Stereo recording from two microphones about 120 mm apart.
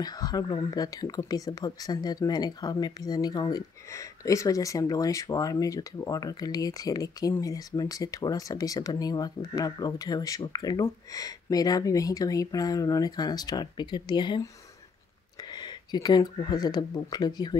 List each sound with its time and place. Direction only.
0.0 s speech: 35° left (ahead or behind)
15.5 s speech: 35° left (ahead or behind)